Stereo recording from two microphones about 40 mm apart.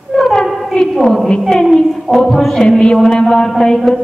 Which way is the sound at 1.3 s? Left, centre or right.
Left.